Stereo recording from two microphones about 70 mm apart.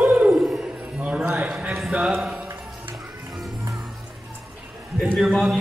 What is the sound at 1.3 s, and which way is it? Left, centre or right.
Clip-clop, centre.